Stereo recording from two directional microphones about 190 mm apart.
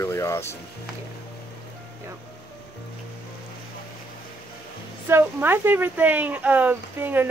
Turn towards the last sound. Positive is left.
turn(degrees=-10)  # may be behind; listen again after turning